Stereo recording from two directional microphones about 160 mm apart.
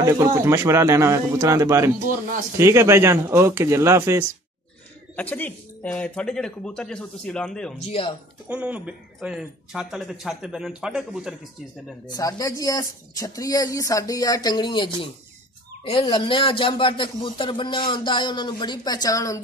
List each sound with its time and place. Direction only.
0.0 s speech: 20° right (ahead or behind)
5.1 s speech: 10° left (ahead or behind)
8.0 s speech: 35° left (ahead or behind)
8.5 s speech: 5° right (ahead or behind)
12.1 s speech: 20° left (ahead or behind)